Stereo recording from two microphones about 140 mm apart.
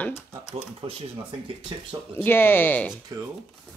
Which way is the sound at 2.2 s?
15° left (ahead or behind).